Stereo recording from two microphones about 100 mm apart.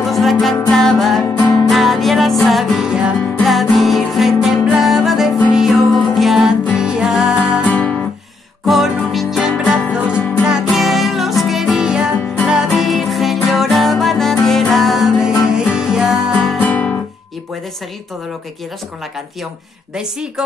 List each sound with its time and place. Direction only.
0.0 s music: centre (ahead or behind)
1.4 s music: 40° left (ahead or behind)
1.7 s music: centre (ahead or behind)
7.7 s guitar: 15° left (ahead or behind)
8.6 s music: centre (ahead or behind)
16.6 s guitar: 15° left (ahead or behind)
20.0 s a woman's voice: 5° right (ahead or behind)